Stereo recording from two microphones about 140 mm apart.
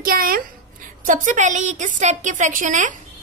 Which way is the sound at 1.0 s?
65° right (ahead or behind).